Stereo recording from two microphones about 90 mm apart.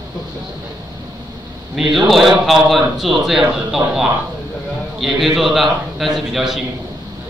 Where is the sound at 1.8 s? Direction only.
Centre (ahead or behind).